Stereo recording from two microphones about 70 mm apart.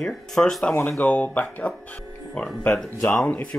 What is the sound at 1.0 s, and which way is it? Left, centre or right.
Speech, left.